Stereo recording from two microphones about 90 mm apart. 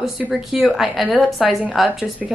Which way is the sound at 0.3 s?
Centre (ahead or behind).